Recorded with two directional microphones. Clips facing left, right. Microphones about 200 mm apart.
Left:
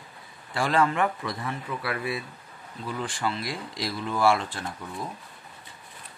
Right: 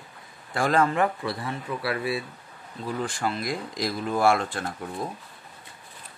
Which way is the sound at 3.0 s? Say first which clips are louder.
Right 1 dB; 45° right (ahead or behind).